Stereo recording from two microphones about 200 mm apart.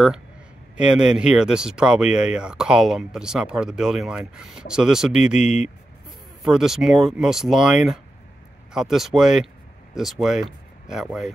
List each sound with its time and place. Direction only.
0.7 s speech: 5° right (ahead or behind)
5.3 s speech: 35° left (ahead or behind)
6.4 s speech: centre (ahead or behind)